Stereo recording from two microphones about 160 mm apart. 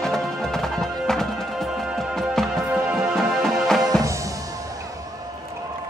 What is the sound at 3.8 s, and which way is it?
Music, 25° right (ahead or behind).